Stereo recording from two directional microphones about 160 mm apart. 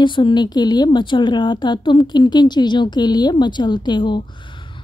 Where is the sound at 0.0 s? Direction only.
30° left (ahead or behind).